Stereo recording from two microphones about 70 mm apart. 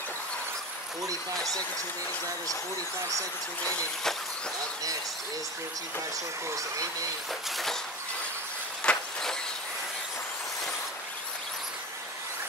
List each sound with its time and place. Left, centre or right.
6.5 s speech: right
8.8 s vehicle: centre